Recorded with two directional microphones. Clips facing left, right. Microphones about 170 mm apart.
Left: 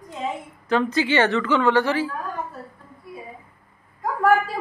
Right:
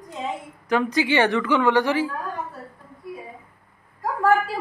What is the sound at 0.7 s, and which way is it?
Speech, 15° right (ahead or behind).